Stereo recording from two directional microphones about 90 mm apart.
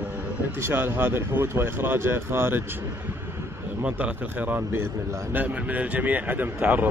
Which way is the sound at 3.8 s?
15° right (ahead or behind).